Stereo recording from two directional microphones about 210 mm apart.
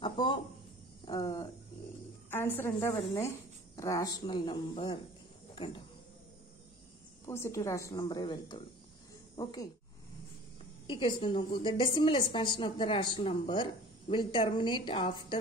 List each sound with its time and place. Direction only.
0.0 s cricket: 20° left (ahead or behind)
2.3 s a woman's voice: 10° left (ahead or behind)
5.5 s a sound: 25° left (ahead or behind)
7.2 s a woman's voice: 10° left (ahead or behind)
10.9 s a woman's voice: 25° left (ahead or behind)